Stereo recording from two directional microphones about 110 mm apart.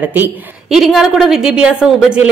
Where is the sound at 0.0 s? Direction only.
15° right (ahead or behind).